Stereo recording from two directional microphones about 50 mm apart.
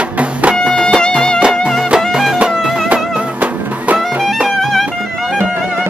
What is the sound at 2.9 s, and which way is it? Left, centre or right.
Music, right.